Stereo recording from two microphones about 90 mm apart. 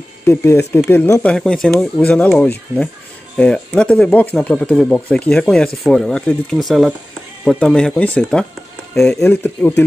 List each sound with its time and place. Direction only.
0.2 s speech: 30° left (ahead or behind)
1.2 s speech: 10° left (ahead or behind)
2.0 s speech: 15° left (ahead or behind)
9.3 s speech: 20° left (ahead or behind)